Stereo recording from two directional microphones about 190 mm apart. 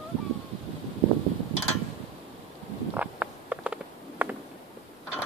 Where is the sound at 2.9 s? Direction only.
5° right (ahead or behind).